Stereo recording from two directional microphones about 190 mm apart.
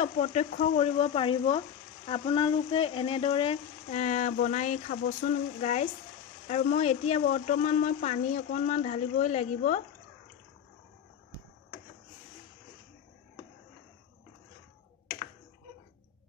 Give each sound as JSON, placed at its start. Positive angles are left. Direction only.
{"t": 0.0, "sound": "speech", "side_deg": 35}
{"t": 5.6, "sound": "speech", "side_deg": 35}